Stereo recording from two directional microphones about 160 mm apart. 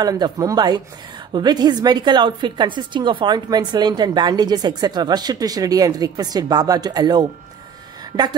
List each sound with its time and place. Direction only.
0.0 s a woman's voice: 25° right (ahead or behind)